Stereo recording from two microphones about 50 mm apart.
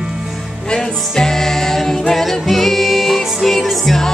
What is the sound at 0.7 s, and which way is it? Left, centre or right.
Music, centre.